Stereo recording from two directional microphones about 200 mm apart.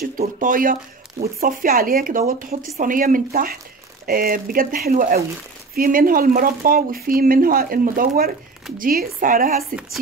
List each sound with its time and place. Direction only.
0.0 s speech: 45° right (ahead or behind)